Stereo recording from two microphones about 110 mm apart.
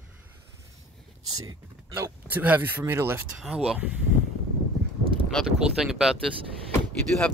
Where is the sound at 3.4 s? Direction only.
5° right (ahead or behind).